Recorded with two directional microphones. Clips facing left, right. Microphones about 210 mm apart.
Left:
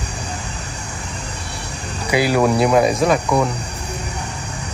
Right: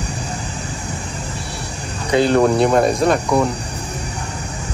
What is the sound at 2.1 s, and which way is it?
Speech, 5° left (ahead or behind).